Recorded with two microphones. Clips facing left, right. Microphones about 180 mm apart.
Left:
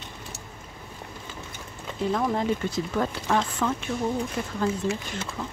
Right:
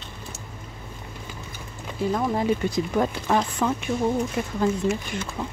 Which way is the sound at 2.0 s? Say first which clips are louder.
Right 1 dB; 10° right (ahead or behind).